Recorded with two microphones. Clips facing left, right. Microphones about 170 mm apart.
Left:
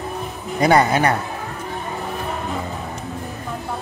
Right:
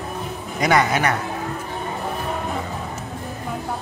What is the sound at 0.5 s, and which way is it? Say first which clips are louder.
Speech: left 3 dB; 30° left (ahead or behind).